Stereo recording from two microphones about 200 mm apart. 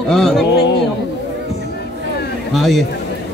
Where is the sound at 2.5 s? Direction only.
Centre (ahead or behind).